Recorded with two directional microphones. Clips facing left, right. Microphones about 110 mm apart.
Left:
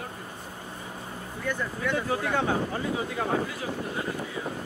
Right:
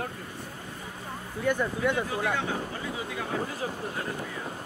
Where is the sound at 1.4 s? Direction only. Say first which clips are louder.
Right 4 dB; 15° right (ahead or behind).